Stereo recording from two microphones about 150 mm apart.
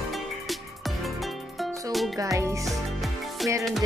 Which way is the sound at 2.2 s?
20° right (ahead or behind).